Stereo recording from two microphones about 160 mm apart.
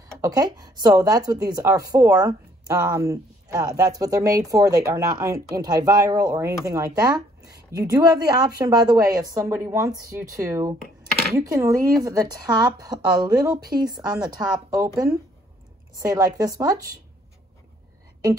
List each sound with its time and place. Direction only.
0.2 s a woman's voice: 25° right (ahead or behind)
16.0 s a woman's voice: 20° right (ahead or behind)